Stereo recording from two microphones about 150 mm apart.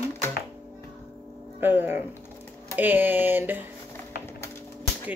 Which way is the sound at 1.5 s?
15° right (ahead or behind).